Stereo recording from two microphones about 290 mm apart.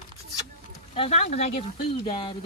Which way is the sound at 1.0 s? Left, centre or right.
Left.